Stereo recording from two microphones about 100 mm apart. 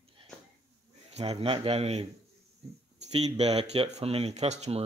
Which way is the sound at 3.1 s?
90° right.